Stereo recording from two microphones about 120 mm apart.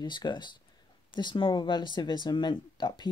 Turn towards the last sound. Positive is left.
turn(degrees=40)  # may be behind; listen again after turning